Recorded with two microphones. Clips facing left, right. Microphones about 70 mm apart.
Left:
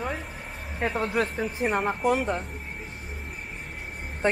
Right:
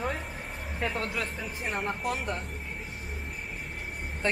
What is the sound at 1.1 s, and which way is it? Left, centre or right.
Speech, left.